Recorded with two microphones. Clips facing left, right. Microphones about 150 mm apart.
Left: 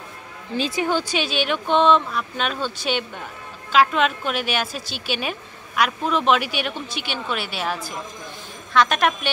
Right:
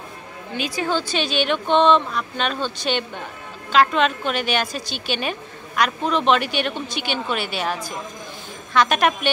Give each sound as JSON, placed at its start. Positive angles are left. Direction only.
{"t": 0.5, "sound": "speech", "side_deg": 30}
{"t": 0.8, "sound": "a woman's voice", "side_deg": 10}